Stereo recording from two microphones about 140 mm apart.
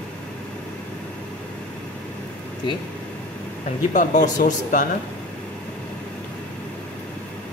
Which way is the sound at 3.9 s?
65° left (ahead or behind).